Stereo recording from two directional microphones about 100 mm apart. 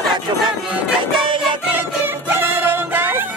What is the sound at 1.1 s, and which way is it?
Music, 55° right (ahead or behind).